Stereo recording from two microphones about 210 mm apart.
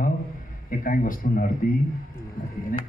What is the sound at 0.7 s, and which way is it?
Speech, 40° left (ahead or behind).